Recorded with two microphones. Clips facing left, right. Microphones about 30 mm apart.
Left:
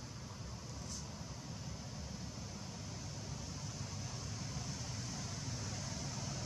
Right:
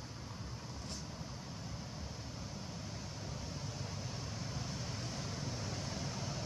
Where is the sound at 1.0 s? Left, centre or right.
Centre.